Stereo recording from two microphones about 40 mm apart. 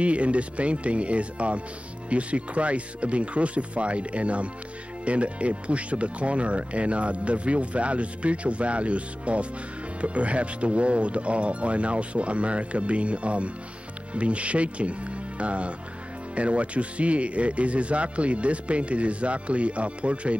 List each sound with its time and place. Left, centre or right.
0.0 s speech: right